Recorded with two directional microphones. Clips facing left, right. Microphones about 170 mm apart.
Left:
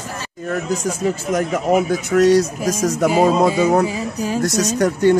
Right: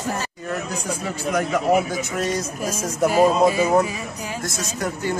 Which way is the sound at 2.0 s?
70° left (ahead or behind).